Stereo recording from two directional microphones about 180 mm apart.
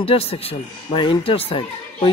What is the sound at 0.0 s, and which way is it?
Speech, 30° left (ahead or behind).